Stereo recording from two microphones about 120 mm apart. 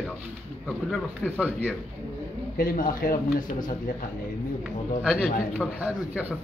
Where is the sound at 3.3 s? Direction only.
90° left.